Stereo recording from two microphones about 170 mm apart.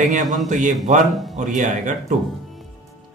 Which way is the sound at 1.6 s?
45° right (ahead or behind).